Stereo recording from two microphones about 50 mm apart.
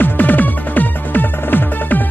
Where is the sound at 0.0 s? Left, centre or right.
Left.